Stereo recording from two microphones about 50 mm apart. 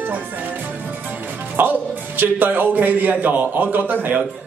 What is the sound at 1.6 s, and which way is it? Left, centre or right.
A man's voice, right.